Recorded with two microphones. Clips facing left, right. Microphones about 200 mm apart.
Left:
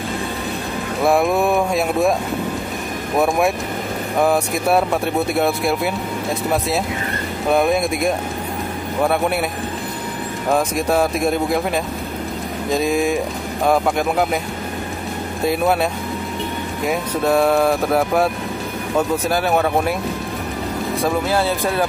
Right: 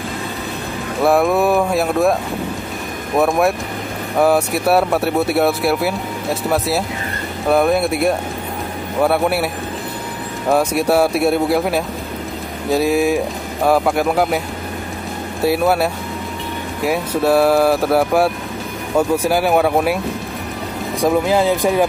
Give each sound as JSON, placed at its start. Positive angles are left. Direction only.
{"t": 1.0, "sound": "speech", "side_deg": 0}
{"t": 3.2, "sound": "speech", "side_deg": 0}
{"t": 7.5, "sound": "speech", "side_deg": -5}
{"t": 10.5, "sound": "speech", "side_deg": -10}
{"t": 15.4, "sound": "speech", "side_deg": -5}
{"t": 21.0, "sound": "speech", "side_deg": -15}